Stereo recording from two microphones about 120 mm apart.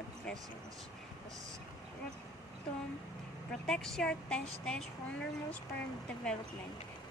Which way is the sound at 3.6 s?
5° left (ahead or behind).